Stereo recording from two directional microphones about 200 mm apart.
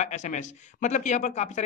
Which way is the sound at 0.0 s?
35° left (ahead or behind).